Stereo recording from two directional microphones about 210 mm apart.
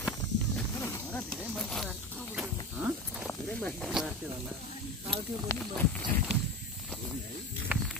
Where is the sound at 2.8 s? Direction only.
5° right (ahead or behind).